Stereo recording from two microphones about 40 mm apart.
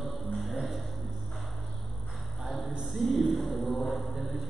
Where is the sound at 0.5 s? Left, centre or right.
Centre.